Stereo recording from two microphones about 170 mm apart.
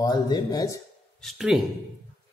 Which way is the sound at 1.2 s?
5° right (ahead or behind).